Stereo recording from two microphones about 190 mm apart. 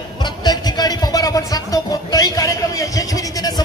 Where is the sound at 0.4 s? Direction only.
20° left (ahead or behind).